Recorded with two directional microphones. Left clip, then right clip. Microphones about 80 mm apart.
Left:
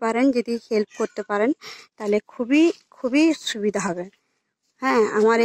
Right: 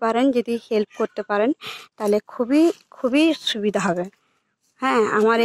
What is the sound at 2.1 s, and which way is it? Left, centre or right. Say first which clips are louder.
Speech: even; centre.